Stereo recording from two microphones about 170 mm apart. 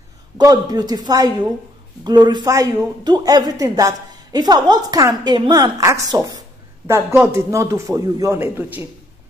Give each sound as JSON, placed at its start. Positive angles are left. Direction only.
{"t": 0.4, "sound": "a woman's voice", "side_deg": -20}